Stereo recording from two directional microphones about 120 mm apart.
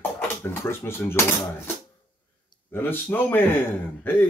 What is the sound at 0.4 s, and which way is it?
Speech, 20° left (ahead or behind).